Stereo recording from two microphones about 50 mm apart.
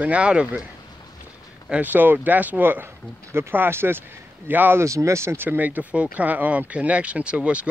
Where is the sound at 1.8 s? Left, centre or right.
Right.